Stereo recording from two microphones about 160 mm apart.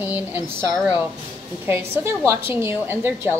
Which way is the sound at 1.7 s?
15° right (ahead or behind).